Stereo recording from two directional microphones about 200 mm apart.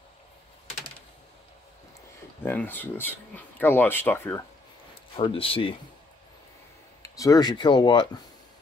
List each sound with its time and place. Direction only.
2.4 s speech: 10° left (ahead or behind)
5.1 s speech: 25° left (ahead or behind)
7.0 s speech: 15° left (ahead or behind)